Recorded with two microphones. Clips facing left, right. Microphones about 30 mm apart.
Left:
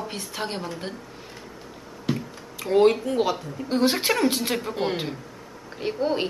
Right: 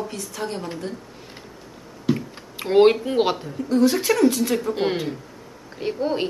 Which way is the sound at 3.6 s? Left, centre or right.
Left.